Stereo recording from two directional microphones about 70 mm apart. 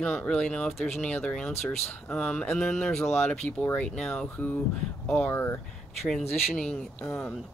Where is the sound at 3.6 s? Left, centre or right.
Left.